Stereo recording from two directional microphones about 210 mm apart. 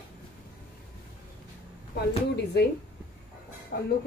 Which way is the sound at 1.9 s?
50° left (ahead or behind).